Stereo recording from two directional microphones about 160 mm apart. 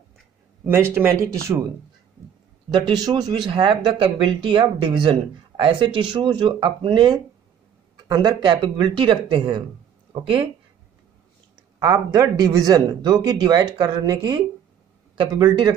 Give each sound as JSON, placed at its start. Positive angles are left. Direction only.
{"t": 0.7, "sound": "speech", "side_deg": -15}
{"t": 2.7, "sound": "speech", "side_deg": -25}
{"t": 11.8, "sound": "speech", "side_deg": -25}